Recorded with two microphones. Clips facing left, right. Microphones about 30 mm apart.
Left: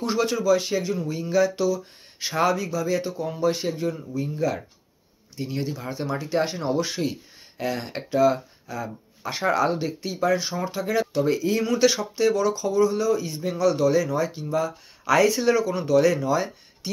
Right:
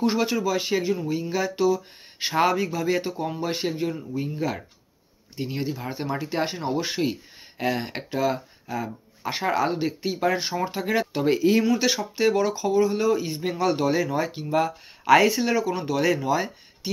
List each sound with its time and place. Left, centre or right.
0.0 s speech: centre; by 4.5 s right
5.3 s speech: right
9.5 s speech: centre
10.2 s speech: right
11.6 s speech: centre
15.3 s speech: centre